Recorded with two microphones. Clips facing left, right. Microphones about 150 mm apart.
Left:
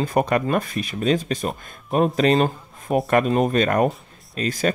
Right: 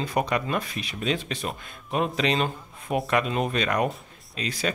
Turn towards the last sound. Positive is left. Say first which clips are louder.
# left 7 dB
turn(degrees=45)  # may be behind; listen again after turning